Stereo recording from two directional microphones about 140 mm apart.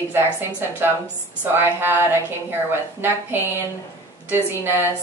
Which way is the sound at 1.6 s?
15° right (ahead or behind).